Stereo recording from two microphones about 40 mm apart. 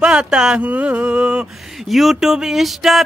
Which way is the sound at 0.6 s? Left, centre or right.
Right.